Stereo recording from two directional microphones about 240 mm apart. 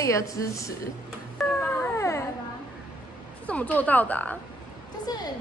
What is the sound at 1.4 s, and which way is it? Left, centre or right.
Dog, centre.